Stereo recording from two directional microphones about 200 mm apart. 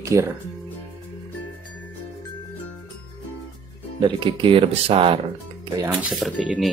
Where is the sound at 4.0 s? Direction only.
25° right (ahead or behind).